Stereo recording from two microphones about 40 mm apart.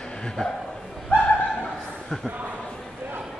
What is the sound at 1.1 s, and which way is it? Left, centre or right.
Chuckle, left.